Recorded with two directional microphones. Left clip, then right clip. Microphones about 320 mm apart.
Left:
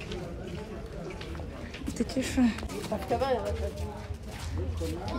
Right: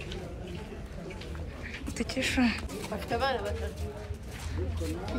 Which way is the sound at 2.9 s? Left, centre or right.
Left.